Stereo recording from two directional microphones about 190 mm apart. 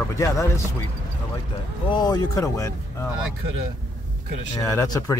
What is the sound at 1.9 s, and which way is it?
Speech, 20° left (ahead or behind).